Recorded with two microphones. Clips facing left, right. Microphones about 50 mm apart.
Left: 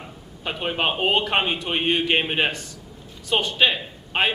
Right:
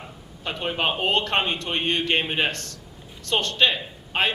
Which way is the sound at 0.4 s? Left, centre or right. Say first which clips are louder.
Left 1 dB; centre.